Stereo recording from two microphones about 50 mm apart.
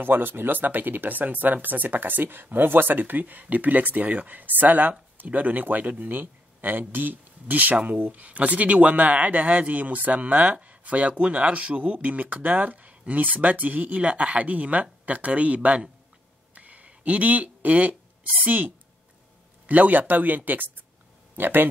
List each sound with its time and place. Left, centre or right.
0.0 s a man's voice: right
16.5 s a sound: right
19.6 s speech: right
21.4 s speech: right